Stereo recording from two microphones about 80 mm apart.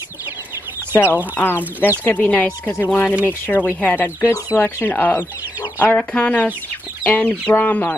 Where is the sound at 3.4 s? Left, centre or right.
Left.